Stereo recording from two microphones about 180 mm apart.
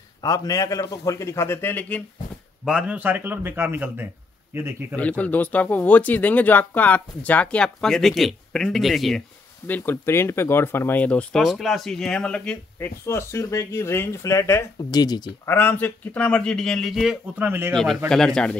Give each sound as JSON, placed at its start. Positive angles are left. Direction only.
{"t": 0.2, "sound": "speech", "side_deg": 20}
{"t": 2.6, "sound": "a man's voice", "side_deg": -5}
{"t": 4.9, "sound": "speech", "side_deg": 5}
{"t": 9.7, "sound": "speech", "side_deg": 10}
{"t": 15.5, "sound": "a man's voice", "side_deg": 10}
{"t": 17.7, "sound": "a man's voice", "side_deg": 5}